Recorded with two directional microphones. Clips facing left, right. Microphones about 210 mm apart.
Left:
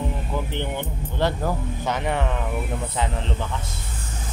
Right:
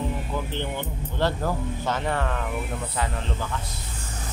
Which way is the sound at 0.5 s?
15° left (ahead or behind).